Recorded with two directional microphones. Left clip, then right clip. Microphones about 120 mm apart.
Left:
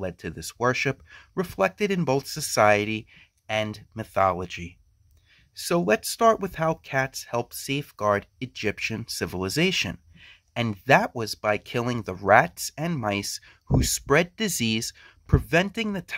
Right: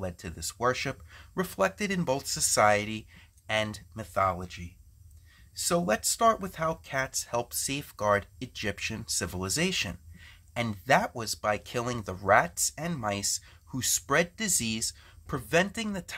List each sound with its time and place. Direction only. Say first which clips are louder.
0.0 s speech: left 4 dB; 40° left (ahead or behind)
1.3 s speech: left 4 dB; 25° left (ahead or behind)
3.4 s speech: left 2 dB; 15° left (ahead or behind)
3.9 s speech: left 6 dB; 45° left (ahead or behind); by 4.7 s 65° left (ahead or behind)
5.6 s speech: left 4 dB; 40° left (ahead or behind)
15.2 s speech: left 3 dB; 35° left (ahead or behind)